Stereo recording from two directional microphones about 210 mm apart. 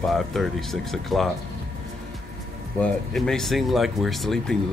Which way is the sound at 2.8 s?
5° left (ahead or behind).